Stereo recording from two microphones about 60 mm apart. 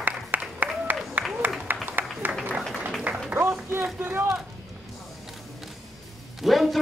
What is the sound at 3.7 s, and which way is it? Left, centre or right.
Speech, right.